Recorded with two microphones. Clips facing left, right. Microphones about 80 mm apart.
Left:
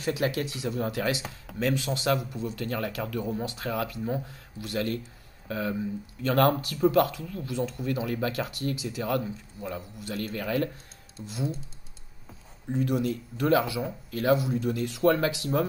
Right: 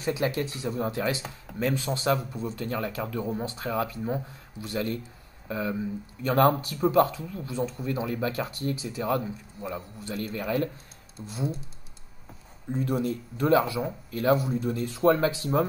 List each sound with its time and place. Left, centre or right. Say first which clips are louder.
0.0 s speech: even; right
12.7 s speech: left 1 dB; right